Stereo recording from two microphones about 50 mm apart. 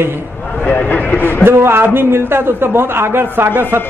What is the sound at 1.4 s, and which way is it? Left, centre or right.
A man's voice, right.